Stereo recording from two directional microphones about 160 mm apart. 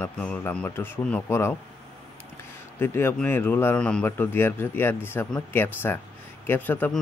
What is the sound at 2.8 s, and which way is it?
A man's voice, 15° left (ahead or behind).